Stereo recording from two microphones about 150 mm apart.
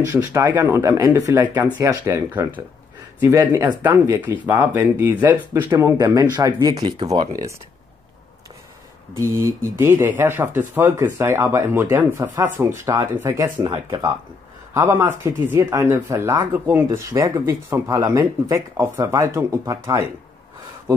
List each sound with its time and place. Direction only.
0.0 s speech: 20° right (ahead or behind)
9.1 s speech: 15° right (ahead or behind)
14.7 s speech: 20° right (ahead or behind)